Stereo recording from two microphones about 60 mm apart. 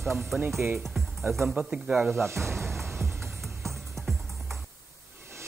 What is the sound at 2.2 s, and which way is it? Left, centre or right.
Speech, right.